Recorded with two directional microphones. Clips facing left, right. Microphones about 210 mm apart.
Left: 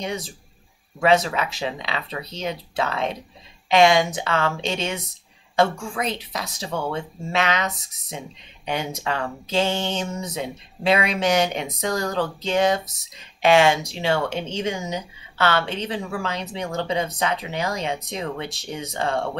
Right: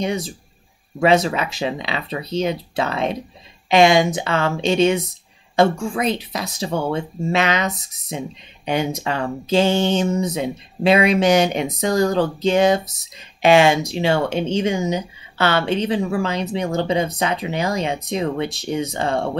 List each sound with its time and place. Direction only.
0.9 s speech: 15° right (ahead or behind)